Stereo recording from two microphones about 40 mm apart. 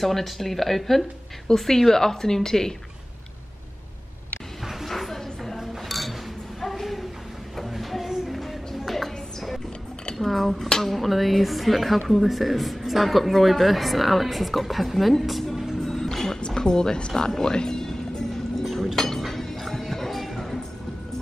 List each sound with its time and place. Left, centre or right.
0.0 s a woman's voice: centre
4.6 s a sound: centre
8.1 s music: centre
10.1 s cutlery: centre
10.7 s speech: centre
15.8 s music: centre
16.3 s music: left
18.7 s chink: centre